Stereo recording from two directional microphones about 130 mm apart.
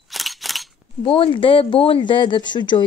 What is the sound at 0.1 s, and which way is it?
Scissors, centre (ahead or behind).